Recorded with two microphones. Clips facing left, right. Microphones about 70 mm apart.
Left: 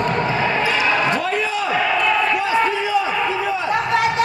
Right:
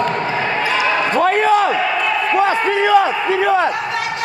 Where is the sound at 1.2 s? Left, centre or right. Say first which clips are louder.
Right 8 dB; right.